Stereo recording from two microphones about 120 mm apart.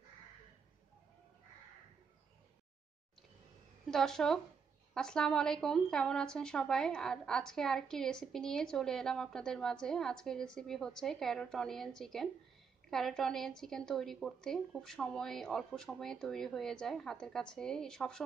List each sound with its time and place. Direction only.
3.8 s a woman's voice: 5° left (ahead or behind)